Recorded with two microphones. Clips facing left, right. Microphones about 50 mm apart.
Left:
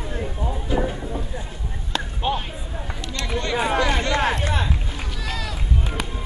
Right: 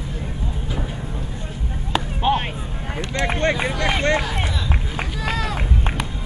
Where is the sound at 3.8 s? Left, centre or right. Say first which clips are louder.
Right 2 dB; right.